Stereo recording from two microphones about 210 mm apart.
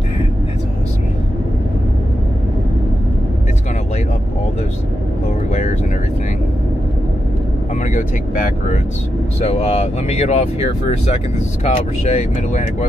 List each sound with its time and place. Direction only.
5.5 s vehicle: 35° left (ahead or behind)
7.8 s vehicle: 35° left (ahead or behind)
9.5 s speech: 30° left (ahead or behind)